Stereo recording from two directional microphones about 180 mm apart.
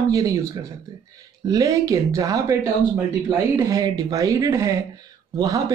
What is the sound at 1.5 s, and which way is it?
Speech, 20° right (ahead or behind).